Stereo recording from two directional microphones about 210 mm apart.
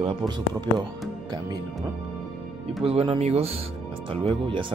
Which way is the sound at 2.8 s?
25° right (ahead or behind).